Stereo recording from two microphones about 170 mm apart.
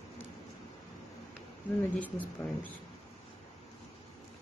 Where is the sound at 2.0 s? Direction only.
10° left (ahead or behind).